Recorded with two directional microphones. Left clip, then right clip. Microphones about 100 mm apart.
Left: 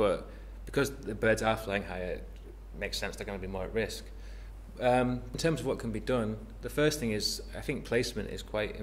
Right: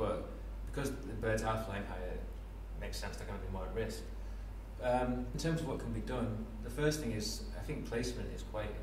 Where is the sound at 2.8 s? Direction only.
40° left (ahead or behind).